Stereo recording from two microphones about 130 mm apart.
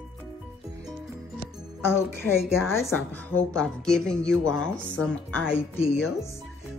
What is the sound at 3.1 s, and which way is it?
Speech, 10° left (ahead or behind).